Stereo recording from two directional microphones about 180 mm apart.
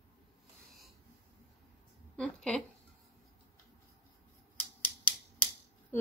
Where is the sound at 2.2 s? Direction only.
5° left (ahead or behind).